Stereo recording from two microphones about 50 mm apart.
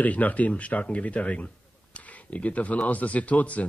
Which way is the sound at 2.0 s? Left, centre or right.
Left.